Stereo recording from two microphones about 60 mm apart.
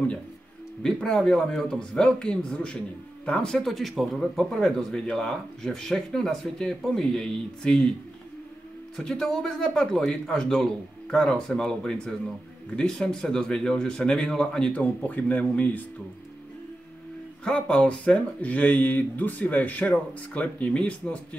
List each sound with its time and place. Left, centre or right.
0.8 s speech: centre
8.9 s speech: centre
14.7 s speech: left
17.6 s speech: centre